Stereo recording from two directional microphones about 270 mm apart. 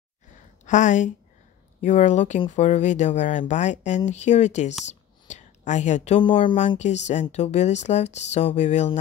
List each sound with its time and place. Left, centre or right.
0.7 s speech: left